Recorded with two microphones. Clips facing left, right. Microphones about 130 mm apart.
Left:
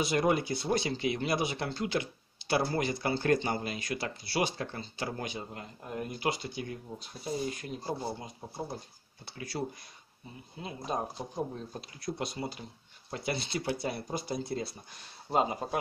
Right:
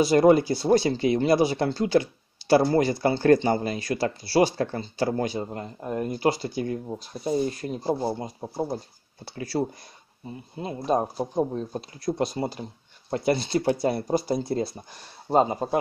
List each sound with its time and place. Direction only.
0.0 s speech: 35° right (ahead or behind)